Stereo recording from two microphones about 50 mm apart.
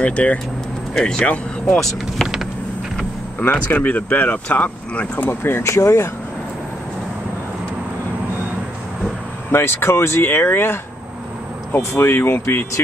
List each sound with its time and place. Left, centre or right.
0.0 s speech: left
0.9 s speech: centre
3.4 s speech: left
5.3 s speech: left
5.6 s speech: left
9.5 s speech: left
12.0 s speech: left